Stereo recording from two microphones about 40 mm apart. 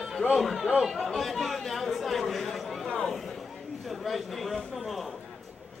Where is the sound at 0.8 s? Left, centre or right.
Centre.